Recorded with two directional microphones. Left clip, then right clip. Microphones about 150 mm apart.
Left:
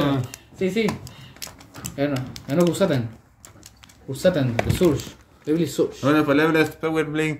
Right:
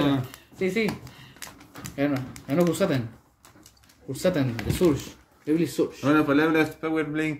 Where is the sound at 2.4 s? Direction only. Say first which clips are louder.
Left 3 dB; 10° right (ahead or behind).